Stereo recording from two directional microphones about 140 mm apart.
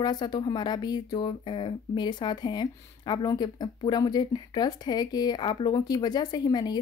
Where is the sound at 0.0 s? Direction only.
30° left (ahead or behind).